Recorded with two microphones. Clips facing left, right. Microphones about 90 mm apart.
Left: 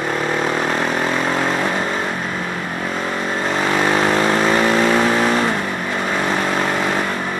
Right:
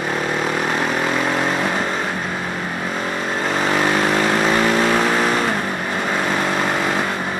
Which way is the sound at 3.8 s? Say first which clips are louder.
Left 2 dB; 35° left (ahead or behind).